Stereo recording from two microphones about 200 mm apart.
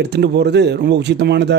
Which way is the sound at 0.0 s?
55° right (ahead or behind).